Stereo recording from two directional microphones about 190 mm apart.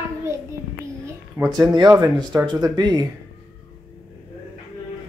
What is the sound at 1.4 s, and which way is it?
Speech, 15° right (ahead or behind).